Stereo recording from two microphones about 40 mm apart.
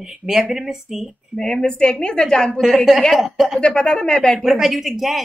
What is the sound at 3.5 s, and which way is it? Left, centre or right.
Speech, left.